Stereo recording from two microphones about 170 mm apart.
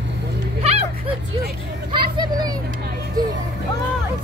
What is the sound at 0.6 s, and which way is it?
Speech, 35° right (ahead or behind).